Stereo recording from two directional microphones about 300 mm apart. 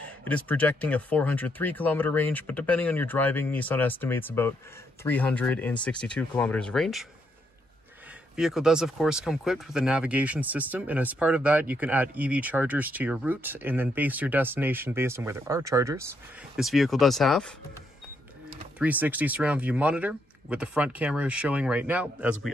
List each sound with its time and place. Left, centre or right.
0.2 s speech: centre
8.4 s speech: centre
16.5 s speech: centre
18.8 s speech: centre